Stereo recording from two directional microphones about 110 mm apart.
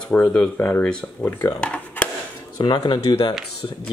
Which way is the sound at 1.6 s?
15° left (ahead or behind).